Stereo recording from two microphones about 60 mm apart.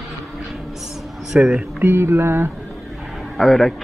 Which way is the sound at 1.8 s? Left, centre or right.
Right.